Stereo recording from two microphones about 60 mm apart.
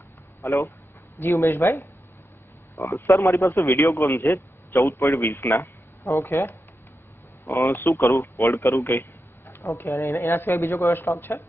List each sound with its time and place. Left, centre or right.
0.4 s speech: left
1.3 s speech: left
2.7 s a man's voice: left
3.6 s speech: left
7.5 s speech: left
9.6 s a man's voice: left
9.9 s speech: left